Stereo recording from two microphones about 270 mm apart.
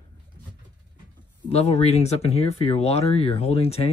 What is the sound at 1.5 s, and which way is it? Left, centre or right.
Speech, left.